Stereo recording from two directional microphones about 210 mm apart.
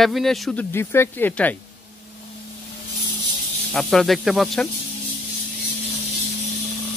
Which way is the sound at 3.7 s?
Centre (ahead or behind).